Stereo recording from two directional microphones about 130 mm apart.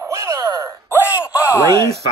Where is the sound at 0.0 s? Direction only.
25° right (ahead or behind).